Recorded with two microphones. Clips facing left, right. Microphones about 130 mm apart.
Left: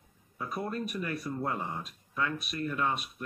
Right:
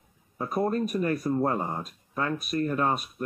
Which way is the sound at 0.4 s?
40° right (ahead or behind).